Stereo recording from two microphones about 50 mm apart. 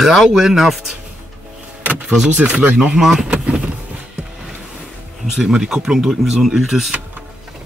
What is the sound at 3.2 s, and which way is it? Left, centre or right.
Vehicle, right.